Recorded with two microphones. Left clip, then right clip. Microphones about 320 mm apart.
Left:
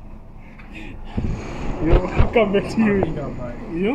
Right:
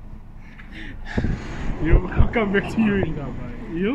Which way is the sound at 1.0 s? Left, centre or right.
Right.